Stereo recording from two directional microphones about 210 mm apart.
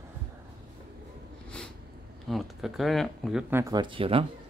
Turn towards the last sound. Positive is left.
turn(degrees=-25)  # may be behind; listen again after turning